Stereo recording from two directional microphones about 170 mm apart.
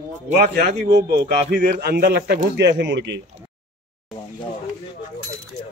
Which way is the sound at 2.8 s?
90° right.